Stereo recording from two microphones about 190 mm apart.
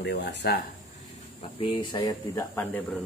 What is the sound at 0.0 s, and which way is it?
Speech, 65° left (ahead or behind).